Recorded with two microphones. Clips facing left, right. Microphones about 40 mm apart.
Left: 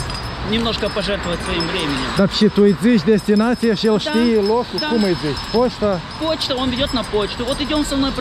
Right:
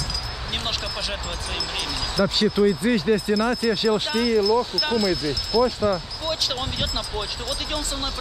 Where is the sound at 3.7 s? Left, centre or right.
Left.